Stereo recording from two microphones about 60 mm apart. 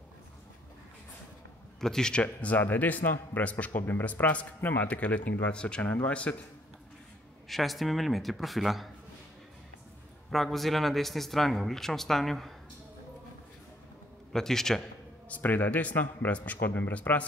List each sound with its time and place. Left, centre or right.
1.8 s a man's voice: centre
2.4 s speech: left
4.8 s speech: left
7.4 s speech: centre
10.3 s speech: centre
14.3 s a man's voice: centre
15.2 s speech: left